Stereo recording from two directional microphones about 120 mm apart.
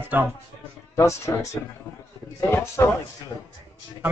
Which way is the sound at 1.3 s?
30° left (ahead or behind).